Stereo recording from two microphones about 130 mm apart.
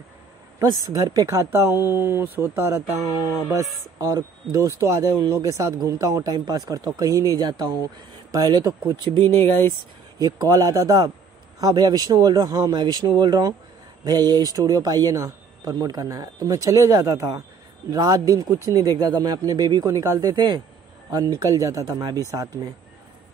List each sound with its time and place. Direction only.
0.8 s speech: 25° right (ahead or behind)
9.4 s speech: 20° left (ahead or behind)
10.1 s speech: 30° right (ahead or behind)